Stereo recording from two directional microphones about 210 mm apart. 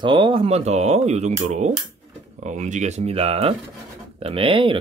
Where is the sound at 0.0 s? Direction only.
25° right (ahead or behind).